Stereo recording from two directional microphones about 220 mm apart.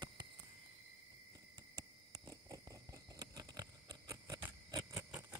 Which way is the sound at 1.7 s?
20° right (ahead or behind).